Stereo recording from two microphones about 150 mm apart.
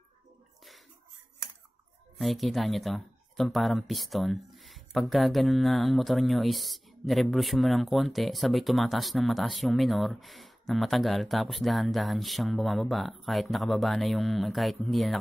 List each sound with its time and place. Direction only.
2.1 s speech: centre (ahead or behind)